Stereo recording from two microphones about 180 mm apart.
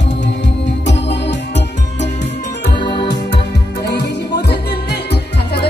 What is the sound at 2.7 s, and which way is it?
Music, 25° left (ahead or behind).